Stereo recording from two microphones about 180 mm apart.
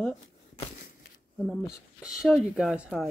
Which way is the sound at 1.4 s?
5° right (ahead or behind).